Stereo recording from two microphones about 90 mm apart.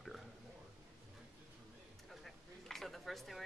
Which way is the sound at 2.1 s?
Centre (ahead or behind).